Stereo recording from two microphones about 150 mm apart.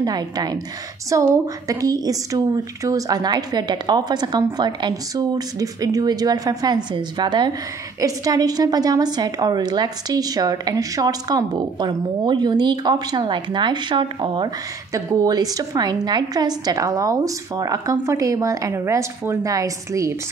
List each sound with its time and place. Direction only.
0.0 s a woman's voice: 25° right (ahead or behind)